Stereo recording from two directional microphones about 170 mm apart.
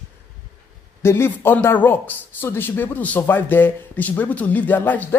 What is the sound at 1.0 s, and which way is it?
A man's voice, 15° left (ahead or behind).